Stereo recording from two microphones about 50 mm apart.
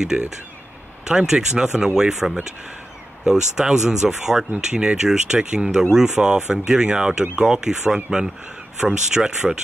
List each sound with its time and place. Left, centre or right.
0.1 s speech: right
1.0 s speech: centre